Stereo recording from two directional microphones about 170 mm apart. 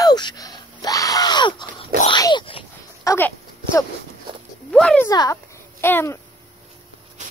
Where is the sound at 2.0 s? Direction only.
25° left (ahead or behind).